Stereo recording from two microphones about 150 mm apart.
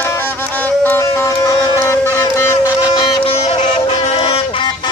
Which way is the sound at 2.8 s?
35° left (ahead or behind).